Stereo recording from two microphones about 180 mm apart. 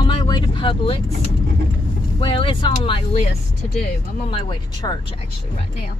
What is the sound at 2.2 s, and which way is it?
Speech, 30° left (ahead or behind).